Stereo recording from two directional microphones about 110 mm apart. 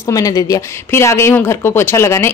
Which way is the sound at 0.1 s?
35° left (ahead or behind).